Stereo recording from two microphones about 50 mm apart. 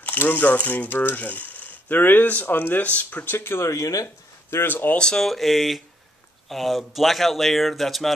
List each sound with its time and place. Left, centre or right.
0.0 s speech: left
3.3 s speech: left
3.6 s speech: left
4.6 s speech: left
4.9 s speech: centre